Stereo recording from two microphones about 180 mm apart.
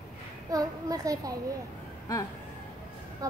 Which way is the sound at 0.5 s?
20° right (ahead or behind).